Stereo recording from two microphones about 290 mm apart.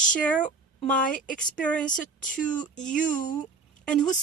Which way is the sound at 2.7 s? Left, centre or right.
Left.